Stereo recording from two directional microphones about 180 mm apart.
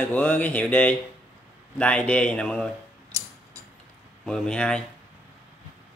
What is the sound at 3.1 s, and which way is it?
Tick-tock, 20° right (ahead or behind).